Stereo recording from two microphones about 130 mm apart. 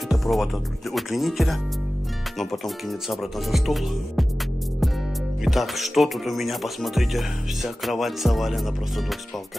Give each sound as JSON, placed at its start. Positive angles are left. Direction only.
{"t": 0.1, "sound": "music", "side_deg": 0}
{"t": 5.4, "sound": "music", "side_deg": 0}